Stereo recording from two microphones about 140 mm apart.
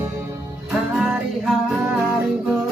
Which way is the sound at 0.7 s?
5° right (ahead or behind).